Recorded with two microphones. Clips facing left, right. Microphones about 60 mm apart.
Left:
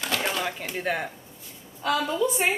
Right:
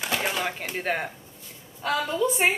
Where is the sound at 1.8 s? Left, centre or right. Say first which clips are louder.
Left 1 dB; centre.